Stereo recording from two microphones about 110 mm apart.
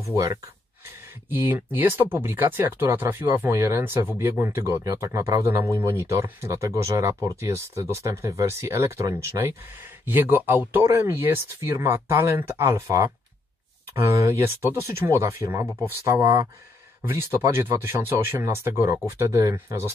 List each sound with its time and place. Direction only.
0.1 s speech: 30° right (ahead or behind)